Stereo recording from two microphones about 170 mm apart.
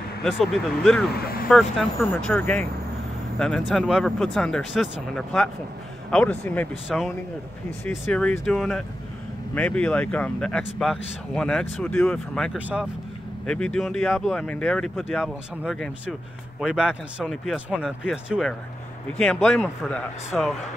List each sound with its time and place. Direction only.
0.2 s speech: centre (ahead or behind)
1.1 s speech: 65° left (ahead or behind)
1.5 s speech: centre (ahead or behind)
12.5 s speech: 10° right (ahead or behind)
13.5 s speech: 5° left (ahead or behind)